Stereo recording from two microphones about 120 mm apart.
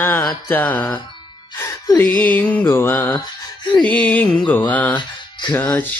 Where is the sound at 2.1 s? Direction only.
15° left (ahead or behind).